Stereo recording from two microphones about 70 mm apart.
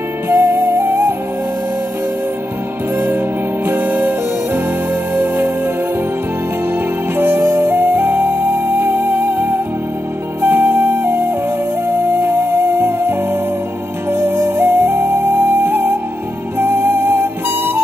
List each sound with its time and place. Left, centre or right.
0.3 s music: right
3.0 s music: right
5.1 s music: right
7.2 s music: right
10.4 s flute: right
12.2 s music: right